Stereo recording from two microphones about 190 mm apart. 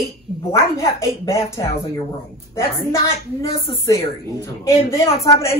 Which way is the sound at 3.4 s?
15° left (ahead or behind).